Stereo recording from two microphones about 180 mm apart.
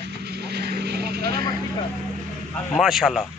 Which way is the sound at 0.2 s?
65° right (ahead or behind).